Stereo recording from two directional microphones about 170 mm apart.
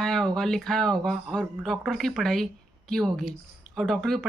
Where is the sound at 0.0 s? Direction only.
5° left (ahead or behind).